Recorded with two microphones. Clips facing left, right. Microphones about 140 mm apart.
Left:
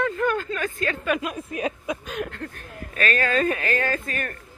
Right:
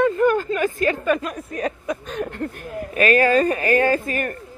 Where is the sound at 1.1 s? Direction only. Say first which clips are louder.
Right 4 dB; 10° left (ahead or behind).